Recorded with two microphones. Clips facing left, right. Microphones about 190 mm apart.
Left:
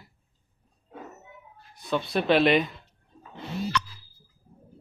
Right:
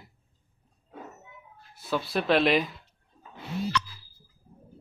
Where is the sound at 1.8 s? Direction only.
Centre (ahead or behind).